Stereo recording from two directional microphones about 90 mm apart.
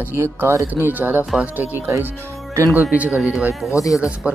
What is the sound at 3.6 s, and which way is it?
Speech, 35° left (ahead or behind).